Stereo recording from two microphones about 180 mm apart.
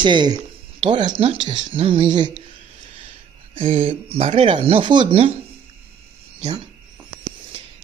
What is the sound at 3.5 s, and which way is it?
Speech, 30° right (ahead or behind).